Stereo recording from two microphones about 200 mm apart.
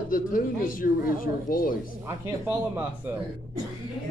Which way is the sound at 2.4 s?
10° right (ahead or behind).